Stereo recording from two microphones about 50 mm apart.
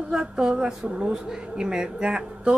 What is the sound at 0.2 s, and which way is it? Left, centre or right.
Speech, centre.